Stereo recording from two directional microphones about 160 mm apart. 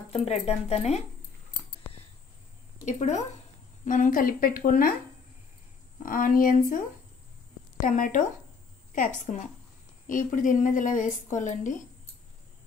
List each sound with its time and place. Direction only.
0.1 s a woman's voice: 40° left (ahead or behind)
2.8 s a woman's voice: 50° left (ahead or behind)
6.0 s a woman's voice: 60° left (ahead or behind)
7.8 s a woman's voice: 55° left (ahead or behind)